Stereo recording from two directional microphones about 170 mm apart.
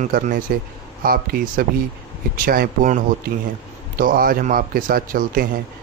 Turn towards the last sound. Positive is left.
turn(degrees=-55)  # may be behind; listen again after turning